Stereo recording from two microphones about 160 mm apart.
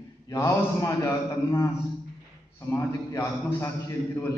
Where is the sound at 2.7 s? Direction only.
20° left (ahead or behind).